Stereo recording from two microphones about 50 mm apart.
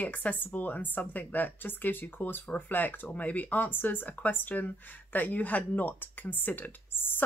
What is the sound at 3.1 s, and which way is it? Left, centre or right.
Speech, left.